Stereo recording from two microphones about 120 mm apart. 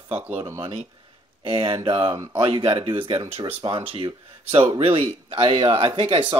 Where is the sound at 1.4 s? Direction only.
45° right (ahead or behind).